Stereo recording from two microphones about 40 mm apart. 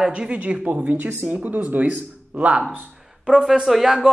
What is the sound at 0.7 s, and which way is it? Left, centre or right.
Speech, right.